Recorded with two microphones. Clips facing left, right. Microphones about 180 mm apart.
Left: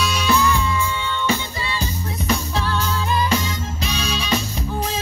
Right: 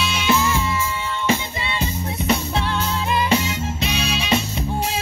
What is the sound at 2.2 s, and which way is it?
Music, 30° right (ahead or behind).